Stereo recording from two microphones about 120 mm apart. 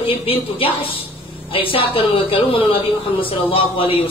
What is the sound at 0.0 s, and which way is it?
A man's voice, 50° left (ahead or behind).